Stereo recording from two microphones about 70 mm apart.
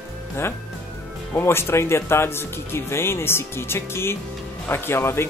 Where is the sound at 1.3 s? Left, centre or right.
Left.